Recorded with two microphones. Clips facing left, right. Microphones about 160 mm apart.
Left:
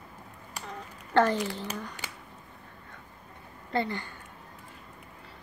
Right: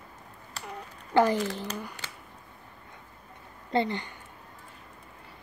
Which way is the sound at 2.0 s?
15° left (ahead or behind).